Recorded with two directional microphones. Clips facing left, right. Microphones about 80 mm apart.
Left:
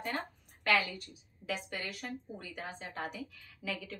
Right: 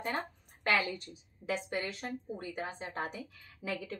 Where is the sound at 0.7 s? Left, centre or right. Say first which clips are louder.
Even; right.